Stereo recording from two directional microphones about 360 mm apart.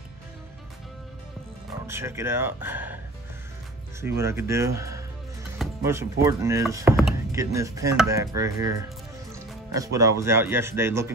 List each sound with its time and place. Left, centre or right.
1.9 s speech: centre
4.0 s speech: centre